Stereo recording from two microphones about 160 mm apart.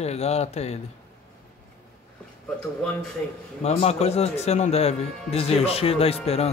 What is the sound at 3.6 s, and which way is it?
Speech, 40° left (ahead or behind).